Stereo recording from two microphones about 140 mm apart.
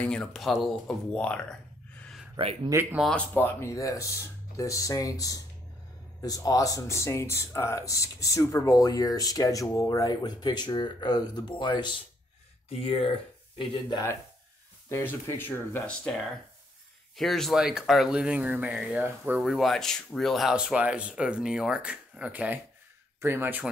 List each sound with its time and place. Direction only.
0.0 s speech: 5° left (ahead or behind)
2.3 s speech: 35° right (ahead or behind)
2.7 s speech: 15° right (ahead or behind)
3.0 s speech: 5° left (ahead or behind); by 11.9 s 30° left (ahead or behind)
12.6 s speech: 45° left (ahead or behind)
14.9 s speech: 20° left (ahead or behind)
17.2 s speech: centre (ahead or behind)